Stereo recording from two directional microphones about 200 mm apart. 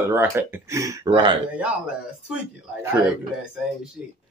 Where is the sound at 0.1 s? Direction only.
10° right (ahead or behind).